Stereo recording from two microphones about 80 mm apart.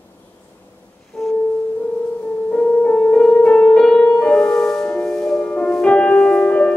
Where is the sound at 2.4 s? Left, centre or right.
Centre.